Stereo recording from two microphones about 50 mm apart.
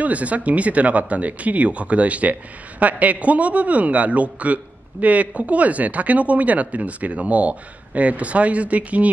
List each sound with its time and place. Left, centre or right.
0.0 s speech: right